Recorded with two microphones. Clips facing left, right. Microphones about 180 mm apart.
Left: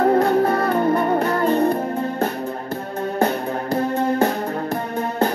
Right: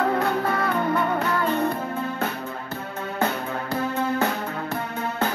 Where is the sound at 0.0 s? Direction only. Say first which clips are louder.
Left 7 dB; 35° left (ahead or behind).